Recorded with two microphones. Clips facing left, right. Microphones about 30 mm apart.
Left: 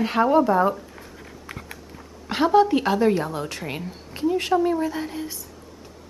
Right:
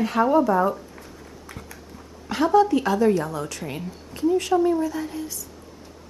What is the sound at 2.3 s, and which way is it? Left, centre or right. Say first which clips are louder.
Speech: left 1 dB; left.